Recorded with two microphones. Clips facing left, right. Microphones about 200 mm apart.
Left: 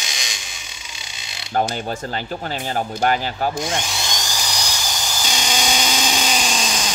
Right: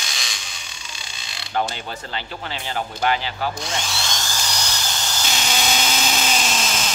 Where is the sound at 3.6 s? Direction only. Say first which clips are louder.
Left 4 dB; 20° left (ahead or behind).